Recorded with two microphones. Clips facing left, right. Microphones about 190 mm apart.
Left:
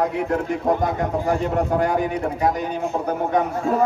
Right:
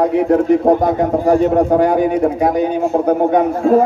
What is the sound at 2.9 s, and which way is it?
Speech, 50° right (ahead or behind).